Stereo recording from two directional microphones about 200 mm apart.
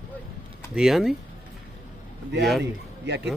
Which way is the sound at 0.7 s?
Centre (ahead or behind).